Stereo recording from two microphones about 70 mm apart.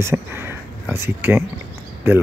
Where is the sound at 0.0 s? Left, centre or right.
Right.